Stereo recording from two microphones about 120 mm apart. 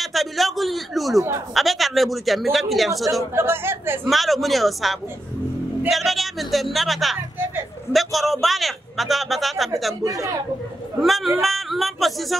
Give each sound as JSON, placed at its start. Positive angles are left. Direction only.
{"t": 0.0, "sound": "a man's voice", "side_deg": 0}
{"t": 3.3, "sound": "a woman's voice", "side_deg": -20}
{"t": 4.0, "sound": "a man's voice", "side_deg": 0}
{"t": 10.0, "sound": "a woman's voice", "side_deg": -25}
{"t": 11.0, "sound": "a man's voice", "side_deg": 0}